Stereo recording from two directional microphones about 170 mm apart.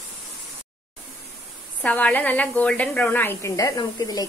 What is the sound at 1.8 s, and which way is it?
A woman's voice, 10° left (ahead or behind).